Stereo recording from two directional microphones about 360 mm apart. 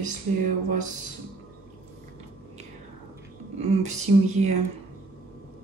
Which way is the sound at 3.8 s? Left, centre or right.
Centre.